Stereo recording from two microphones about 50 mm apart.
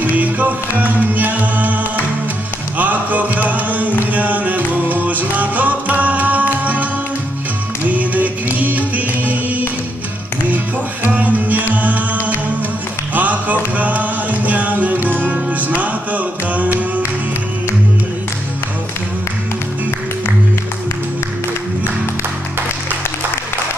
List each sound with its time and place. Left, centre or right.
0.1 s music: right
2.8 s a sound: right
4.1 s music: right
11.1 s music: right
13.1 s a sound: right
13.7 s music: right